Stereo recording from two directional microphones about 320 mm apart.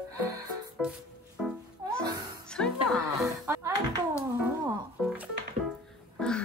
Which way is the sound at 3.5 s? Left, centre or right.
Centre.